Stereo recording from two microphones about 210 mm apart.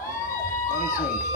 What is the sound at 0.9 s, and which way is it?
Speech, 40° left (ahead or behind).